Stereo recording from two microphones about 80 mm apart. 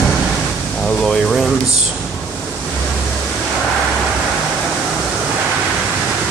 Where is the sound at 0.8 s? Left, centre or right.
Centre.